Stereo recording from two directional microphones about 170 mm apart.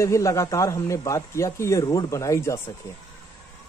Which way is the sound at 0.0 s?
15° left (ahead or behind).